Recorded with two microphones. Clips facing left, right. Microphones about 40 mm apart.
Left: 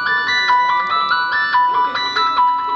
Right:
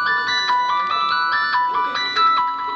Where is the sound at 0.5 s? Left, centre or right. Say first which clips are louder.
Left 4 dB; left.